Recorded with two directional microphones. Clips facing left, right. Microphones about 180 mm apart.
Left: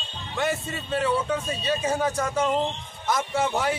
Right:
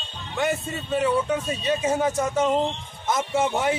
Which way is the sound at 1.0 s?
20° right (ahead or behind).